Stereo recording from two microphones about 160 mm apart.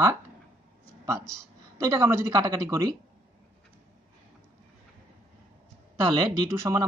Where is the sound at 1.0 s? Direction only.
20° right (ahead or behind).